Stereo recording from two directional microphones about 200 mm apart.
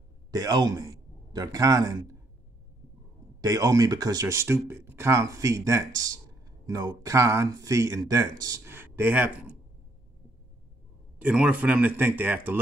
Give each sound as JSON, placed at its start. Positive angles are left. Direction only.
{"t": 0.3, "sound": "a man's voice", "side_deg": -20}
{"t": 3.3, "sound": "speech", "side_deg": -15}
{"t": 11.1, "sound": "speech", "side_deg": -5}